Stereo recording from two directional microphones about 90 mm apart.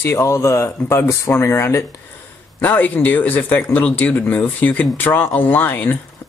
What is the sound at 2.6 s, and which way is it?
Speech, 20° left (ahead or behind).